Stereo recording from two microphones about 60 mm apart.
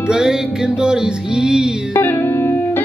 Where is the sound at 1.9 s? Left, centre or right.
Left.